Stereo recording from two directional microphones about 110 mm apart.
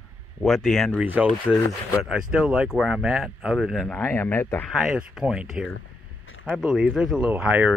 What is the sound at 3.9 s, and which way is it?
Speech, 15° left (ahead or behind).